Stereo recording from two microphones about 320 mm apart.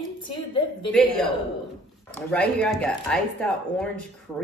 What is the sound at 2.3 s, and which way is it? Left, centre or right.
Speech, centre.